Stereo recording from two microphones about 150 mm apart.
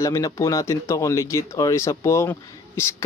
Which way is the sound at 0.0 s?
20° left (ahead or behind).